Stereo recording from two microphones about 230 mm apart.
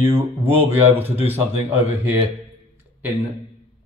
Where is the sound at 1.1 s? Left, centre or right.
Right.